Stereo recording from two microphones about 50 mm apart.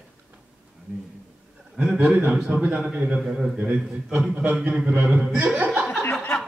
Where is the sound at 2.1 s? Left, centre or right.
Right.